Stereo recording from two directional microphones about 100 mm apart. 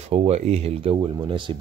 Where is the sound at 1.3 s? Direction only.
55° right (ahead or behind).